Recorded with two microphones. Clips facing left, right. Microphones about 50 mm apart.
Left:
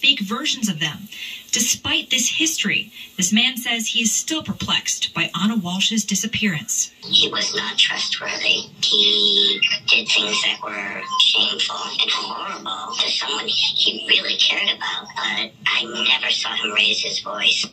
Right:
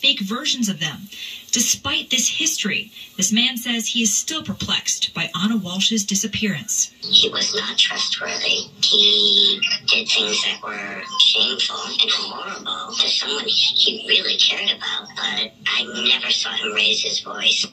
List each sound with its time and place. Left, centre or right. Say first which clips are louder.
0.0 s speech: left 2 dB; left